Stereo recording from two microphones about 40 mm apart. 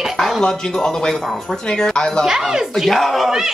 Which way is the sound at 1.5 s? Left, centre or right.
Centre.